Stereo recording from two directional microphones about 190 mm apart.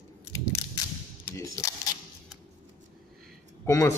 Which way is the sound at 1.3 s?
15° left (ahead or behind).